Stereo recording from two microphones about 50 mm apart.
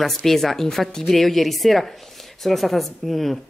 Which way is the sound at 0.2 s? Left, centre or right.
Centre.